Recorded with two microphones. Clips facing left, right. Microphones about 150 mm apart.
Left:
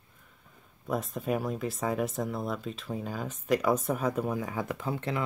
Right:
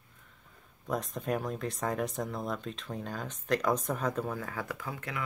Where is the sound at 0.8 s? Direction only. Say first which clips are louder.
Left 2 dB; 5° left (ahead or behind).